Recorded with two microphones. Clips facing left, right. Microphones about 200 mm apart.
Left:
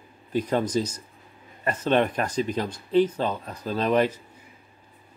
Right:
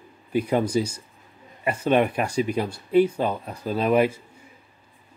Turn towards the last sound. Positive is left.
turn(degrees=-10)  # may be behind; listen again after turning